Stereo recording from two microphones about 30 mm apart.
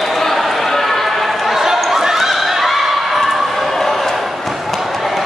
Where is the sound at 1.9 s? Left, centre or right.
Centre.